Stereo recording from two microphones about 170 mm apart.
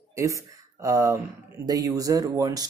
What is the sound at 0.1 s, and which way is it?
Speech, 20° right (ahead or behind).